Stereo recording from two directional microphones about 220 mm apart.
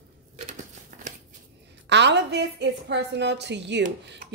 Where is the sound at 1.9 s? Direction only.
50° right (ahead or behind).